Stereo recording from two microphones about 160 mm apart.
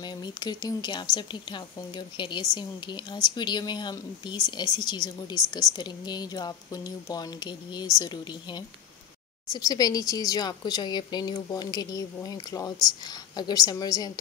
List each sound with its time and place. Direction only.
0.0 s a woman's voice: 25° left (ahead or behind)